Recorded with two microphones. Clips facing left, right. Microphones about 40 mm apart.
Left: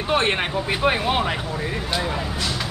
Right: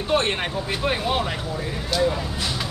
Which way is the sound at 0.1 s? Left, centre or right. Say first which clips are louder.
Left 2 dB; centre.